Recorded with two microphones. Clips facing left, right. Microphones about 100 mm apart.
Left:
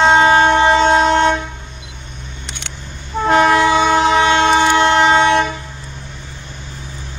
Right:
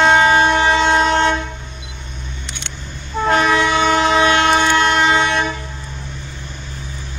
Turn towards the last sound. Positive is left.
turn(degrees=25)  # may be behind; listen again after turning